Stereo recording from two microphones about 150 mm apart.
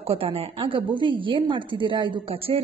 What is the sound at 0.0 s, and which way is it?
A woman's voice, 40° right (ahead or behind).